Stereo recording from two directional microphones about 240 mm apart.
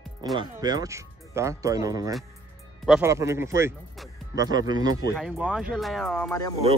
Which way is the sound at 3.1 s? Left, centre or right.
Centre.